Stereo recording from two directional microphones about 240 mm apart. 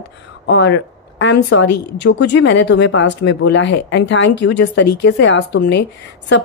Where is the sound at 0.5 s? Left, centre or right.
Left.